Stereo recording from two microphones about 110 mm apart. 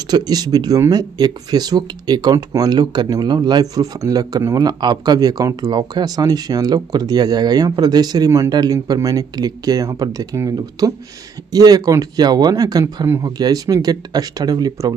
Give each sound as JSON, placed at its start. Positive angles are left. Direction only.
{"t": 0.1, "sound": "speech", "side_deg": -35}